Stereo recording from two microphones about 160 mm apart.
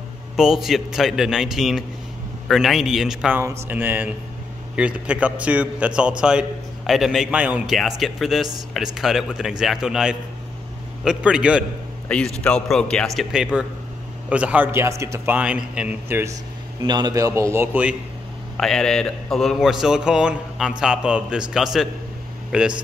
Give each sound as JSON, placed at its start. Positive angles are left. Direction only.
{"t": 0.4, "sound": "a man's voice", "side_deg": -5}
{"t": 12.1, "sound": "a man's voice", "side_deg": 5}
{"t": 16.8, "sound": "a man's voice", "side_deg": -25}
{"t": 18.6, "sound": "a man's voice", "side_deg": 5}